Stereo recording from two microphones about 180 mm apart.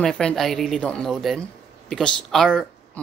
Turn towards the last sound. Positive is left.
turn(degrees=5)  # may be behind; listen again after turning